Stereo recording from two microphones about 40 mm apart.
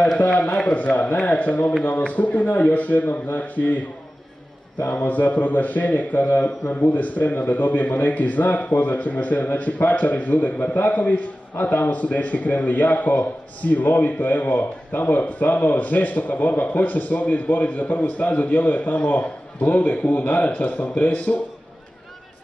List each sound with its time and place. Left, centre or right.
0.6 s a man's voice: left
5.0 s speech: left
11.5 s a man's voice: left